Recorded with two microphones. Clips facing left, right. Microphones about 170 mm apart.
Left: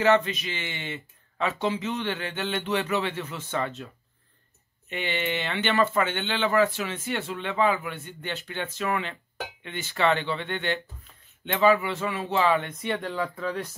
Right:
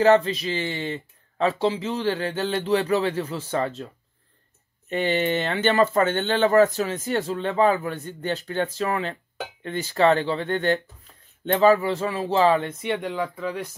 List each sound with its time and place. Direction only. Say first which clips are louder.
0.0 s speech: right 4 dB; 35° right (ahead or behind)
4.8 s speech: right 7 dB; 40° right (ahead or behind)
12.8 s speech: right 3 dB; 15° right (ahead or behind)